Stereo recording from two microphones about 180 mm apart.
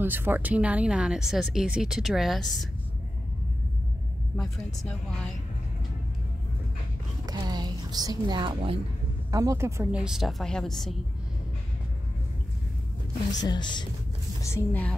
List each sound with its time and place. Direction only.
0.0 s speech: 10° right (ahead or behind)
4.4 s speech: centre (ahead or behind)
7.2 s a sound: 20° right (ahead or behind)
9.3 s speech: 20° right (ahead or behind)
9.9 s speech: 5° right (ahead or behind)
13.4 s speech: 25° left (ahead or behind)
14.4 s a woman's voice: 10° left (ahead or behind)